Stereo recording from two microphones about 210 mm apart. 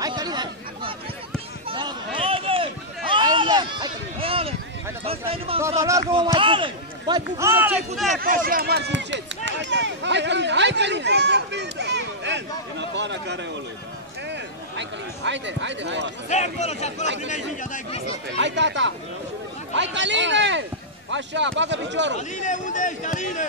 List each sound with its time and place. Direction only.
0.0 s chatter: 20° right (ahead or behind)
1.7 s a sound: 20° right (ahead or behind)
5.6 s a man's voice: 15° right (ahead or behind)
8.1 s speech: 40° right (ahead or behind)
14.8 s speech: 60° right (ahead or behind)
16.3 s a man's voice: 30° left (ahead or behind)
18.4 s speech: 55° right (ahead or behind)
22.1 s a man's voice: 35° left (ahead or behind)